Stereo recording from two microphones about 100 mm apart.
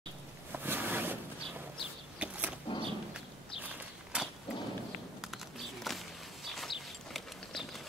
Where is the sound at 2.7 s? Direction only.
60° left (ahead or behind).